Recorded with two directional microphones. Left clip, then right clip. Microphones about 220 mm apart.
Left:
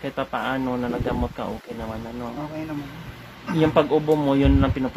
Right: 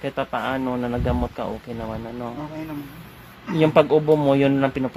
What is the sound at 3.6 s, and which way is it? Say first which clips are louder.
Speech: right 3 dB; 45° right (ahead or behind).